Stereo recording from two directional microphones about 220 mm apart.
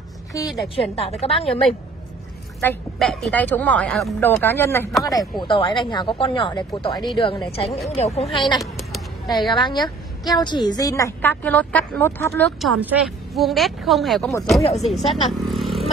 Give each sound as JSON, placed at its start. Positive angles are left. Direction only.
{"t": 0.3, "sound": "a woman's voice", "side_deg": 15}
{"t": 0.7, "sound": "speech", "side_deg": 25}
{"t": 2.6, "sound": "a woman's voice", "side_deg": 5}
{"t": 5.4, "sound": "speech", "side_deg": 20}
{"t": 8.5, "sound": "a sound", "side_deg": 0}
{"t": 9.3, "sound": "a woman's voice", "side_deg": 20}
{"t": 12.8, "sound": "speech", "side_deg": -5}